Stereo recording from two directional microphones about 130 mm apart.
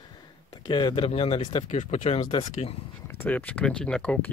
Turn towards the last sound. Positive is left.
turn(degrees=10)  # may be behind; listen again after turning